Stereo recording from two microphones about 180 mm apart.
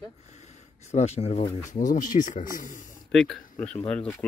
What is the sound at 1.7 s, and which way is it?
Speech, 45° left (ahead or behind).